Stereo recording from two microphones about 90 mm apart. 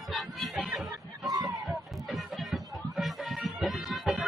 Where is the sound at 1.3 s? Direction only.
40° right (ahead or behind).